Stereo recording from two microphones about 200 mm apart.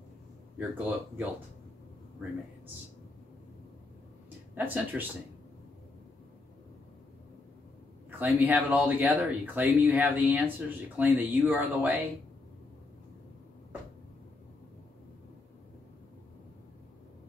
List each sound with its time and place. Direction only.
0.6 s speech: 10° right (ahead or behind)
4.6 s speech: 10° right (ahead or behind)
8.2 s speech: 10° right (ahead or behind)